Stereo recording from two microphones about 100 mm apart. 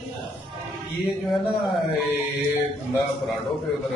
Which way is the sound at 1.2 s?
Centre (ahead or behind).